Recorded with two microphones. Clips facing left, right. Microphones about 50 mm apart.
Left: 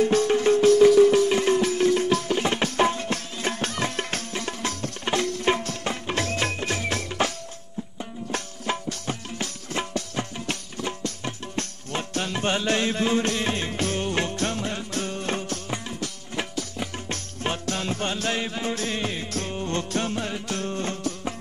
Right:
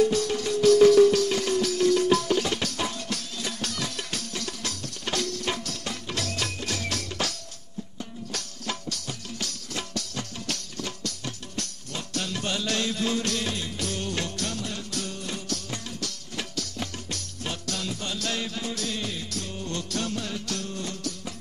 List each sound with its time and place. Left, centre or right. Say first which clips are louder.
0.0 s music: left 4 dB; left
15.7 s music: left 4 dB; left
17.1 s music: left 5 dB; left